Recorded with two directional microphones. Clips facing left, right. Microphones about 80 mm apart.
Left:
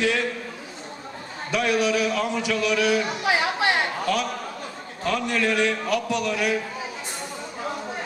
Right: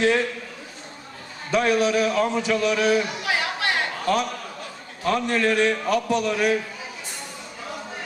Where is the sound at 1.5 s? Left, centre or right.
Right.